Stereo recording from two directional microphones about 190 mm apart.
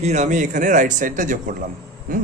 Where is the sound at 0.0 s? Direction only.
40° right (ahead or behind).